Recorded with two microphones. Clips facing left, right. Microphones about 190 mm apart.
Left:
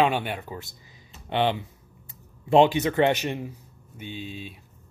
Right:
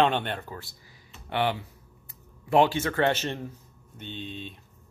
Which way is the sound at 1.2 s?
20° left (ahead or behind).